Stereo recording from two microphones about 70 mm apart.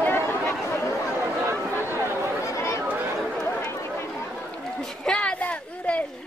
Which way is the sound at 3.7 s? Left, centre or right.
Left.